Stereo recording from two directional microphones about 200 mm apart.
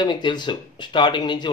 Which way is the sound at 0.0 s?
20° left (ahead or behind).